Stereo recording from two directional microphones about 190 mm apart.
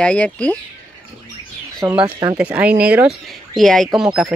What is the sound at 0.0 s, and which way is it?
Speech, 5° left (ahead or behind).